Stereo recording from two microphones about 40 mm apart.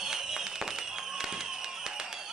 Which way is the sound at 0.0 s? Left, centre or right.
Centre.